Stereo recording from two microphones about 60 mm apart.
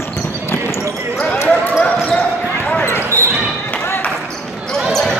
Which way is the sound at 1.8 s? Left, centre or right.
Left.